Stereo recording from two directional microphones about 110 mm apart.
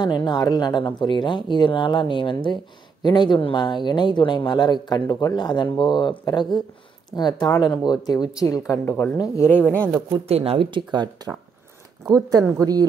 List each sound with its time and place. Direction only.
0.0 s speech: 40° left (ahead or behind); by 9.8 s 15° left (ahead or behind)
10.2 s speech: 65° right (ahead or behind); by 12.8 s 35° right (ahead or behind)